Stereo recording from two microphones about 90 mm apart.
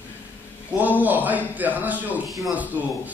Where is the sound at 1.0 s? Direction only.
20° right (ahead or behind).